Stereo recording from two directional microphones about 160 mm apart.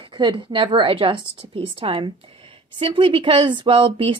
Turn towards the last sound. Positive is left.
turn(degrees=-35)  # may be behind; listen again after turning